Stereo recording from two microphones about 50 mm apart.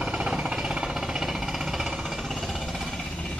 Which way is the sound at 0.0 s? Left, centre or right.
Centre.